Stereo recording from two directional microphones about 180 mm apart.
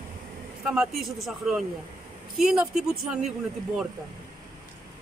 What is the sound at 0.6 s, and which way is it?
Speech, 5° right (ahead or behind).